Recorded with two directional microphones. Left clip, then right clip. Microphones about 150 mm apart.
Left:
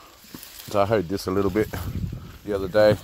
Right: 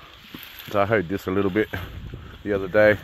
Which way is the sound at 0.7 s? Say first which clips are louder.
Even; 45° left (ahead or behind).